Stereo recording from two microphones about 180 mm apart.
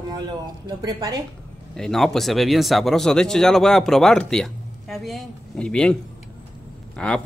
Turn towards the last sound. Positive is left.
turn(degrees=5)  # may be behind; listen again after turning